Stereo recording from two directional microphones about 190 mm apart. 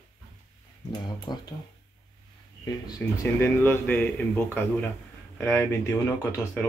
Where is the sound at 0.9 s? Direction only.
20° left (ahead or behind).